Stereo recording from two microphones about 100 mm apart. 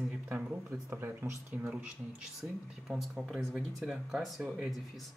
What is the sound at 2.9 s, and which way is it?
Speech, 5° right (ahead or behind).